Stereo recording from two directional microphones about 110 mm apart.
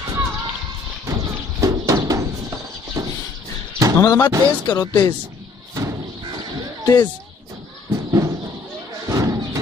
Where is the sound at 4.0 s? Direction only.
35° left (ahead or behind).